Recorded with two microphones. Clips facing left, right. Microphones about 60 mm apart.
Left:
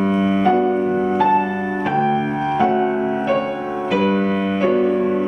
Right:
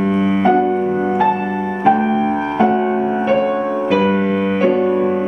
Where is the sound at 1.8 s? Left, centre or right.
Centre.